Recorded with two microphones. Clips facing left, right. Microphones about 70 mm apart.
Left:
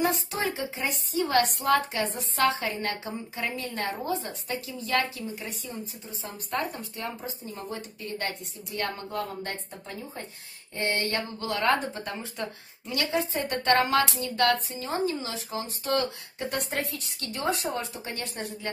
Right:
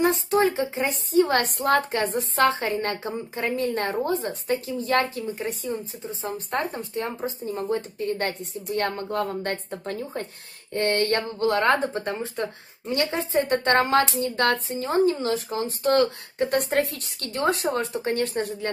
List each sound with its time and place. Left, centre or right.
0.0 s a woman's voice: right
7.0 s speech: right